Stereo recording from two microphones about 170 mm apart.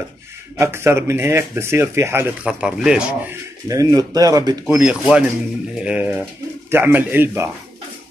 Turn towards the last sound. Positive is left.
turn(degrees=-15)  # may be behind; listen again after turning